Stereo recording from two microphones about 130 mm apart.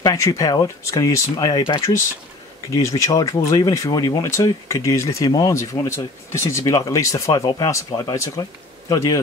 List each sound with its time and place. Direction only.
0.0 s speech: 25° left (ahead or behind)
2.7 s speech: 25° left (ahead or behind)